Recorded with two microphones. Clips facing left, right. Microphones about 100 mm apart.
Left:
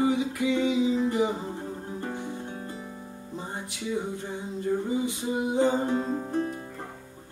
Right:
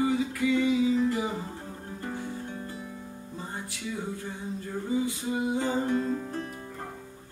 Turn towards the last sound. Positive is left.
turn(degrees=20)  # may be behind; listen again after turning